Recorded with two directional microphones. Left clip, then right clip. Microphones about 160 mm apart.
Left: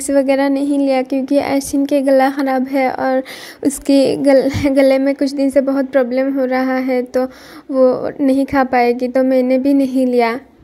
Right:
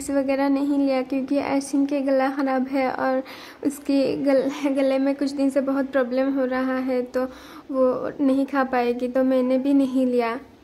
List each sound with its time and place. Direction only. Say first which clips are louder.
0.1 s speech: left 8 dB; 25° left (ahead or behind)